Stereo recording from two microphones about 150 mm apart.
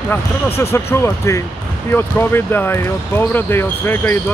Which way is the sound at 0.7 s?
15° left (ahead or behind).